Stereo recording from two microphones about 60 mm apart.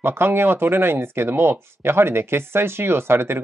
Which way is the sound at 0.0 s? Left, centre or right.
Right.